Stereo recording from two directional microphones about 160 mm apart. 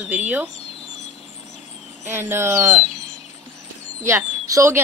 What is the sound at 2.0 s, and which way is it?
Speech, 15° right (ahead or behind).